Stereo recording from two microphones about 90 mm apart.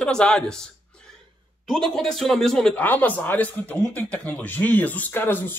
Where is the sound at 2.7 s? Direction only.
20° left (ahead or behind).